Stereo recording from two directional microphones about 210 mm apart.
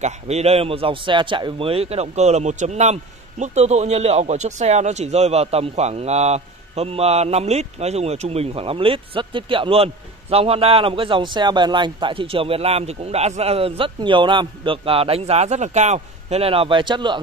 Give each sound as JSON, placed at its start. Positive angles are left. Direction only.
{"t": 0.0, "sound": "a man's voice", "side_deg": -30}